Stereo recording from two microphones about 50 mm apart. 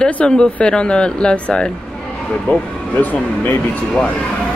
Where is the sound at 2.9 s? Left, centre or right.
Left.